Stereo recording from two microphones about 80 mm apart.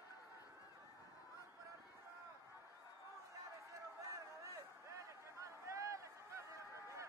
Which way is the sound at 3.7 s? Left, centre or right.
Right.